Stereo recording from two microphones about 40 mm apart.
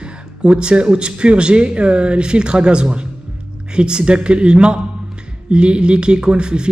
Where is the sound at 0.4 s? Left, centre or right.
Right.